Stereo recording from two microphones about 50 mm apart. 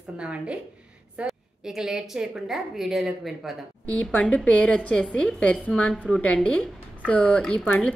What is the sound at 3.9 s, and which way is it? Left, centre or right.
Speech, left.